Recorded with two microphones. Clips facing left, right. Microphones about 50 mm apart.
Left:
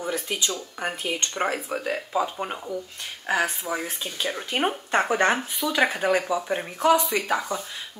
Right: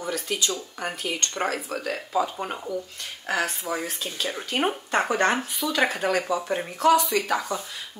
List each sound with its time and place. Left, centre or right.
0.0 s speech: left
2.4 s speech: centre
3.3 s speech: centre